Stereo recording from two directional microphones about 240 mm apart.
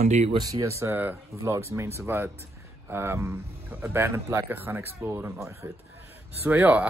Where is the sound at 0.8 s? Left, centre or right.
Centre.